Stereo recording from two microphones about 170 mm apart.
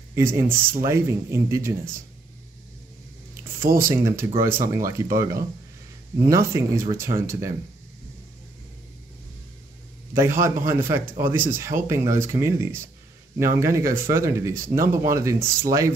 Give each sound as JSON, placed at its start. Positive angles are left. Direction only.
{"t": 0.1, "sound": "speech", "side_deg": -15}
{"t": 3.6, "sound": "speech", "side_deg": -55}
{"t": 3.9, "sound": "speech", "side_deg": -15}
{"t": 10.1, "sound": "speech", "side_deg": -15}